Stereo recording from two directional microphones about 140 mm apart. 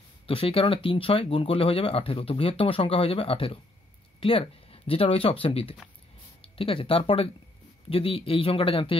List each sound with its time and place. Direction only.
0.3 s speech: 40° left (ahead or behind)